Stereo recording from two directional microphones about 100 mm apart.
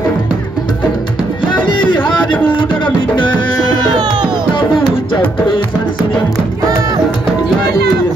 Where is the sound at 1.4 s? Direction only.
50° left (ahead or behind).